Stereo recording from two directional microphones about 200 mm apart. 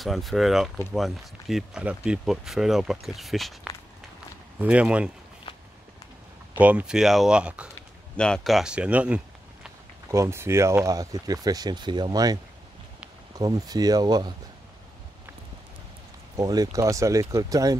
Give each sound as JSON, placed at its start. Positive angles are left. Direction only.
{"t": 0.0, "sound": "speech", "side_deg": 0}
{"t": 6.5, "sound": "speech", "side_deg": -5}
{"t": 13.4, "sound": "speech", "side_deg": -20}
{"t": 16.3, "sound": "speech", "side_deg": -20}